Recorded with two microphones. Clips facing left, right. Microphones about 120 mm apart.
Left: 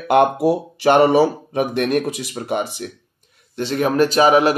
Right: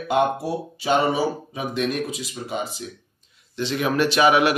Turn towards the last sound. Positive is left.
turn(degrees=35)  # may be behind; listen again after turning